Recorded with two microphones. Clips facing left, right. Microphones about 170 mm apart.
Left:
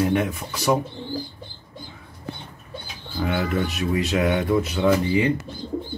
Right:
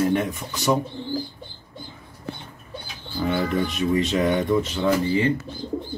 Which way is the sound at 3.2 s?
5° left (ahead or behind).